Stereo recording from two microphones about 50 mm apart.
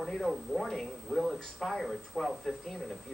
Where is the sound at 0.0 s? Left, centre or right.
Centre.